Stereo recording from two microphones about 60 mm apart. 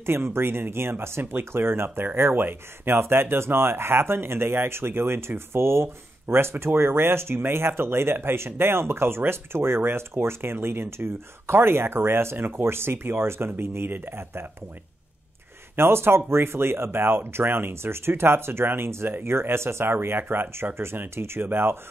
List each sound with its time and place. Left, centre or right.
0.0 s speech: right
15.7 s speech: right